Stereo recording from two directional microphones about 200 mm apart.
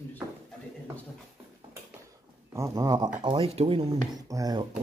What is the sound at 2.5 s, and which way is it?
Speech, 15° right (ahead or behind).